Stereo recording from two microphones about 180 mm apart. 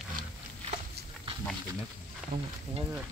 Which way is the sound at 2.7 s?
25° right (ahead or behind).